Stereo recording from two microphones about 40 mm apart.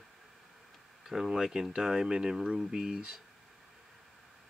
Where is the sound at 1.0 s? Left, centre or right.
Centre.